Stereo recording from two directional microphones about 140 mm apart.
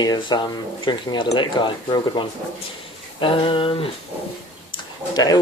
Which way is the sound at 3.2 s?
40° left (ahead or behind).